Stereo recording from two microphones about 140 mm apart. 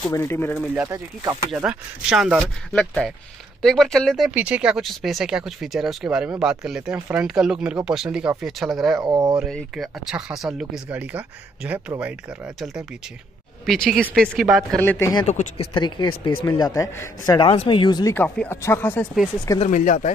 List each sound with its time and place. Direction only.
0.1 s speech: 20° left (ahead or behind)
0.8 s speech: 25° right (ahead or behind)
1.6 s speech: 5° right (ahead or behind)
2.7 s speech: 5° left (ahead or behind)
4.3 s speech: 10° right (ahead or behind)
9.0 s speech: 30° right (ahead or behind)
9.5 s speech: centre (ahead or behind)
14.8 s speech: 20° left (ahead or behind)
15.2 s speech: 50° left (ahead or behind)
15.7 s a man's voice: 35° left (ahead or behind)
17.4 s speech: 35° left (ahead or behind)
18.1 s speech: 15° left (ahead or behind)
19.6 s speech: 65° left (ahead or behind)